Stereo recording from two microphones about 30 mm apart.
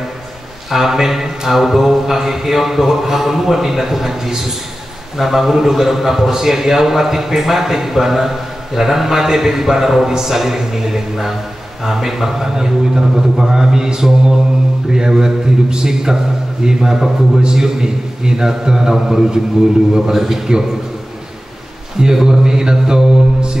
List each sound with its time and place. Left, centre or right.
0.7 s a man's voice: centre
22.0 s a man's voice: right